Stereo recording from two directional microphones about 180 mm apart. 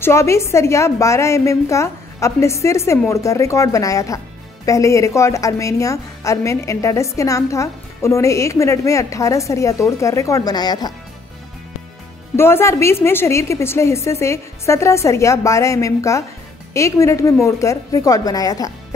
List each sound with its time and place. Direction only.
0.0 s a woman's voice: 15° left (ahead or behind)
12.4 s a woman's voice: 15° left (ahead or behind)